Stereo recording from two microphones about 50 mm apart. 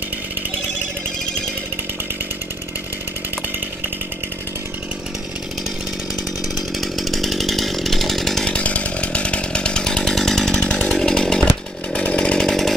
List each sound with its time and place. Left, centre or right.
6.8 s chainsaw: centre
8.5 s chainsaw: left
11.9 s chainsaw: left
12.4 s chainsaw: centre